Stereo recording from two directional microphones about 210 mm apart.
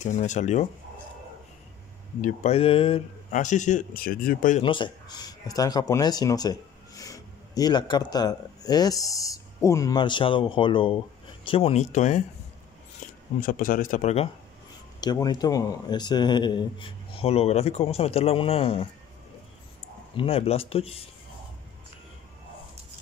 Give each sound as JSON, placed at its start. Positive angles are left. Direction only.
{"t": 0.0, "sound": "speech", "side_deg": 35}
{"t": 2.2, "sound": "speech", "side_deg": 30}
{"t": 4.6, "sound": "speech", "side_deg": 25}
{"t": 13.0, "sound": "a sound", "side_deg": 35}
{"t": 13.4, "sound": "speech", "side_deg": 40}
{"t": 15.0, "sound": "speech", "side_deg": 20}
{"t": 20.2, "sound": "speech", "side_deg": 25}